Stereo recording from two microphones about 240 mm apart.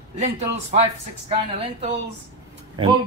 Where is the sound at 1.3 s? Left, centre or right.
Right.